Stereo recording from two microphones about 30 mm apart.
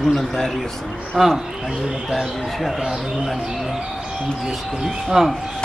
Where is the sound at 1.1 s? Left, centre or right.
Centre.